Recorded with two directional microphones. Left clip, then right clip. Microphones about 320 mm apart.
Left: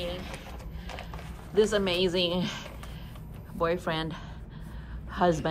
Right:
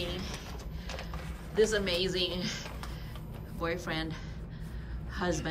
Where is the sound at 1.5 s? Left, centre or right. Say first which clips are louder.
Left 3 dB; centre.